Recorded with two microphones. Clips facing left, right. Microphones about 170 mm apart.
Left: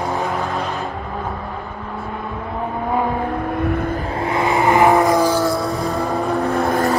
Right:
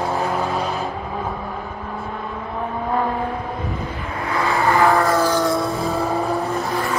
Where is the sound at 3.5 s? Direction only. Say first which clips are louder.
Left 7 dB; 60° left (ahead or behind).